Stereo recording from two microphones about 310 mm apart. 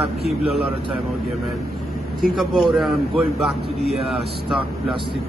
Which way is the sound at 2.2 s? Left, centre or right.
Centre.